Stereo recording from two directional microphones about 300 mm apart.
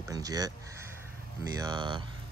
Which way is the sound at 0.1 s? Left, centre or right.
Centre.